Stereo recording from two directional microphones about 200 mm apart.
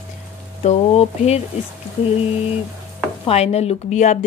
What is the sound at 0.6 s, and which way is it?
Speech, 35° left (ahead or behind).